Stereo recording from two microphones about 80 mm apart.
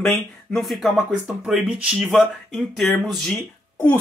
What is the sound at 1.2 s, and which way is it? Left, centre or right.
Speech, centre.